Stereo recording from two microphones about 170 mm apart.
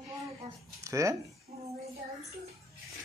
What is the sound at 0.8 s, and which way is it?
Speech, 20° right (ahead or behind).